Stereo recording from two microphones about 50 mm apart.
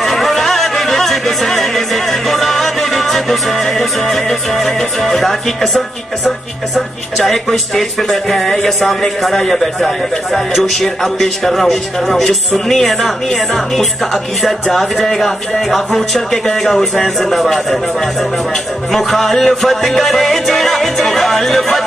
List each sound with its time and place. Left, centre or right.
0.0 s a sound: centre
2.2 s music: centre
4.1 s a woman's voice: centre
14.4 s a woman's voice: centre
18.9 s music: centre